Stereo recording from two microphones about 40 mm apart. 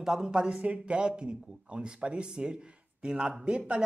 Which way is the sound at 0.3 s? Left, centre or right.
Right.